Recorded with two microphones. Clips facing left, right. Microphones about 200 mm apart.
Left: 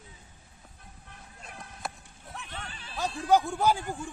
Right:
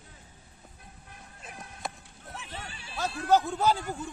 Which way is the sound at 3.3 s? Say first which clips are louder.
Even; 15° left (ahead or behind).